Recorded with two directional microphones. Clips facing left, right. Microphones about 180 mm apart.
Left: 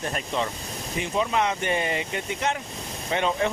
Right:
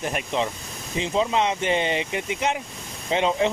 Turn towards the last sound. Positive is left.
turn(degrees=-20)  # may be behind; listen again after turning